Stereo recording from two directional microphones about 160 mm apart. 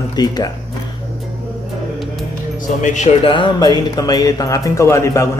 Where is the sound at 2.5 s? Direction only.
50° left (ahead or behind).